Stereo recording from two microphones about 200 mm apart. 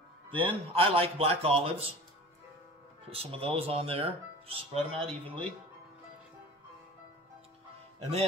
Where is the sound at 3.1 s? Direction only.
30° right (ahead or behind).